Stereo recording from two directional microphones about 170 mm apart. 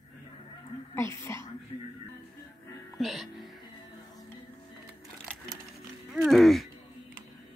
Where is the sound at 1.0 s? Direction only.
15° left (ahead or behind).